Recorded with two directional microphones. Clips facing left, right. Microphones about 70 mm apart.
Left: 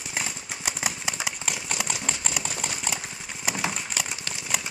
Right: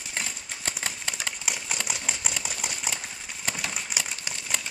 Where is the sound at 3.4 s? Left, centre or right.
Centre.